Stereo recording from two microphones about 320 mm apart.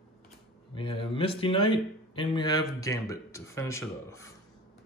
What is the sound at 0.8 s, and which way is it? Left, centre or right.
Speech, centre.